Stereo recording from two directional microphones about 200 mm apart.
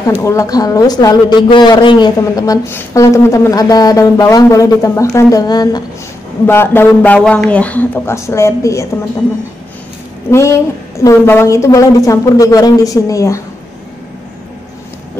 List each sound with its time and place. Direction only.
0.2 s a woman's voice: 15° left (ahead or behind)
10.3 s a woman's voice: 15° left (ahead or behind)